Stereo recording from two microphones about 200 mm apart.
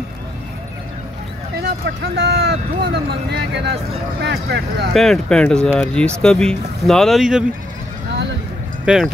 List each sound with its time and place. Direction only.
1.6 s speech: 55° right (ahead or behind)
4.9 s speech: centre (ahead or behind)
8.8 s speech: centre (ahead or behind)